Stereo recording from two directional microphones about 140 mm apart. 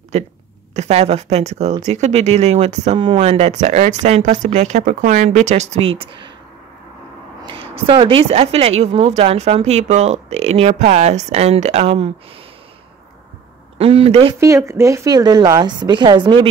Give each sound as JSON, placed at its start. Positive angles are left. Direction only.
{"t": 0.1, "sound": "speech", "side_deg": -50}
{"t": 3.0, "sound": "speech", "side_deg": -35}
{"t": 3.3, "sound": "speech", "side_deg": -50}
{"t": 7.4, "sound": "speech", "side_deg": -40}
{"t": 13.7, "sound": "speech", "side_deg": -45}
{"t": 14.4, "sound": "a woman's voice", "side_deg": -20}